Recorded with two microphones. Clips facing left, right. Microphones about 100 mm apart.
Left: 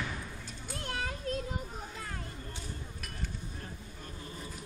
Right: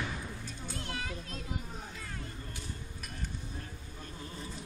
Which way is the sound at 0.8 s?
45° left (ahead or behind).